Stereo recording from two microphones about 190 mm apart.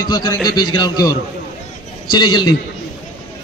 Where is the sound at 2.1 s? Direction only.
20° left (ahead or behind).